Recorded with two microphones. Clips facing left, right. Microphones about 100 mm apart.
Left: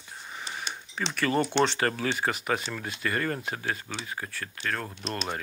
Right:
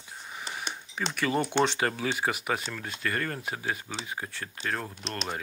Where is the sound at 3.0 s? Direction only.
5° left (ahead or behind).